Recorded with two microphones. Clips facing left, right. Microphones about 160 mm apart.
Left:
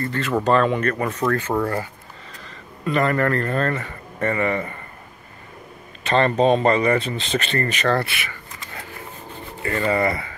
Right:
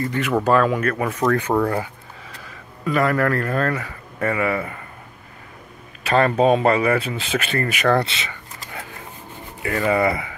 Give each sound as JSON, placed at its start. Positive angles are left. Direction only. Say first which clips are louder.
{"t": 0.0, "sound": "a man's voice", "louder": "right 1 dB", "side_deg": -15}
{"t": 6.0, "sound": "speech", "louder": "right 1 dB", "side_deg": -5}
{"t": 8.0, "sound": "speech", "louder": "right 2 dB", "side_deg": -20}
{"t": 9.3, "sound": "speech", "louder": "right 1 dB", "side_deg": -10}